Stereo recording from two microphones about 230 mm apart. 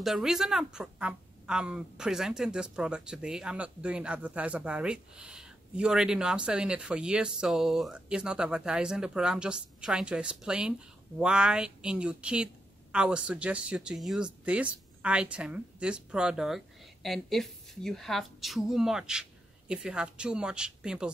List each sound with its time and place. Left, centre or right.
0.0 s a woman's voice: centre